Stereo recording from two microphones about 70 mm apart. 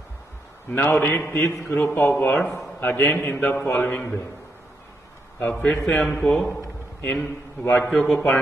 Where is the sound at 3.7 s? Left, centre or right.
Centre.